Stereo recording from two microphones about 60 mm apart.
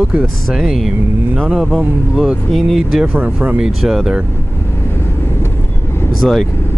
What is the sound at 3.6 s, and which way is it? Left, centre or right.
Speech, centre.